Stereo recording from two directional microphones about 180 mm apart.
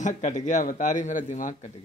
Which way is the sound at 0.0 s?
45° left (ahead or behind).